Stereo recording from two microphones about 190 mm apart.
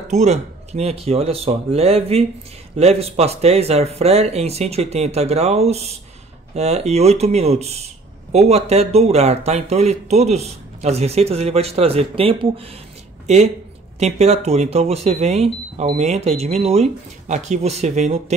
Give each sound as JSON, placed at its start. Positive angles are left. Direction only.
{"t": 0.1, "sound": "a man's voice", "side_deg": -35}